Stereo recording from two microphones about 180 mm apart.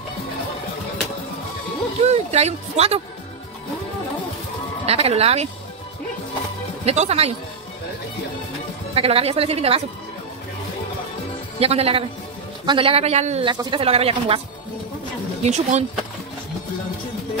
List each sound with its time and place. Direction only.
2.0 s speech: 35° right (ahead or behind)
4.8 s speech: 35° right (ahead or behind)
6.8 s speech: 35° right (ahead or behind)
8.9 s speech: 35° right (ahead or behind)
11.6 s speech: 35° right (ahead or behind)
15.4 s speech: 40° right (ahead or behind)